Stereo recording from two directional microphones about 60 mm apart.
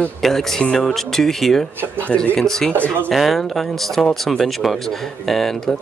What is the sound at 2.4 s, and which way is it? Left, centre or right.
Speech, centre.